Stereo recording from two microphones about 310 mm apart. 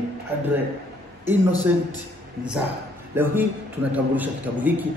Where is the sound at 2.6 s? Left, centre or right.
Centre.